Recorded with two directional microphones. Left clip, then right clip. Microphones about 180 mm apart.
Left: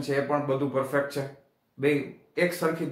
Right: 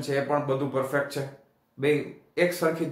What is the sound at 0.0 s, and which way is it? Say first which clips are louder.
Speech: right 1 dB; 10° right (ahead or behind).